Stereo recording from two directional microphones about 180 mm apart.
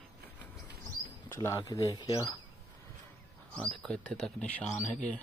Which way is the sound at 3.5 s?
5° left (ahead or behind).